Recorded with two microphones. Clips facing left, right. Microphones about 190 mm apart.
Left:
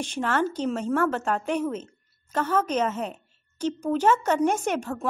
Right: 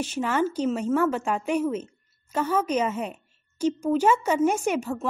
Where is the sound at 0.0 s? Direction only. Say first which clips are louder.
Right 1 dB; 10° right (ahead or behind).